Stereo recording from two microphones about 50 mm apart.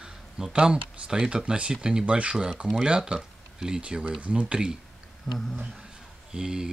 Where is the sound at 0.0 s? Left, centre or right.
Centre.